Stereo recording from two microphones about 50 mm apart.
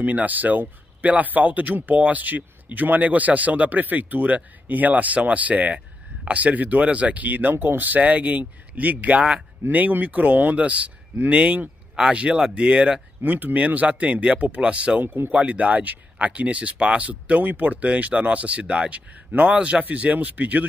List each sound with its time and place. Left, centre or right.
0.0 s speech: right
7.5 s speech: right; by 13.0 s centre
13.2 s speech: right
15.0 s speech: right
15.4 s speech: right